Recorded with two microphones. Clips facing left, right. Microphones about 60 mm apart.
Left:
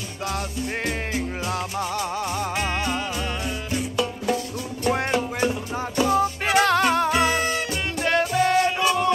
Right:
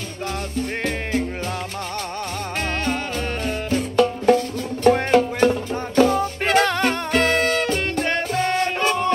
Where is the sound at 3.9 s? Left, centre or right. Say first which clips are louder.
Right 10 dB; right.